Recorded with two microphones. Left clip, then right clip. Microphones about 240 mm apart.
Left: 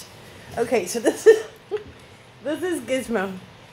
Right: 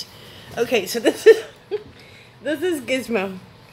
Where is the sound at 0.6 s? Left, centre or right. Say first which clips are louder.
Right 2 dB; right.